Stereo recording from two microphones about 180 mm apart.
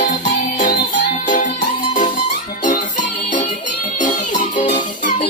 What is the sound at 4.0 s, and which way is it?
Music, 45° left (ahead or behind).